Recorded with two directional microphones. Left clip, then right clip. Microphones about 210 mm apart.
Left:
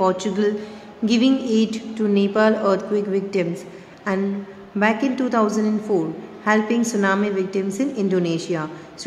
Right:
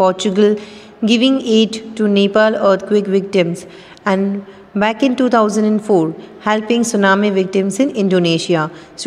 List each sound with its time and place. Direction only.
0.0 s speech: 35° right (ahead or behind)